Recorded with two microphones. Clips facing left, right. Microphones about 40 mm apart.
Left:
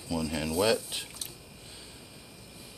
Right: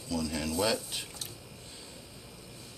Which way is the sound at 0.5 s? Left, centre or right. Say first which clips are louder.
Left 5 dB; centre.